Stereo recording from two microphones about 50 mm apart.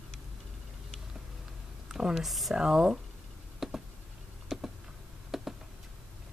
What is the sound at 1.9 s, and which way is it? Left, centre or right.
Speech, centre.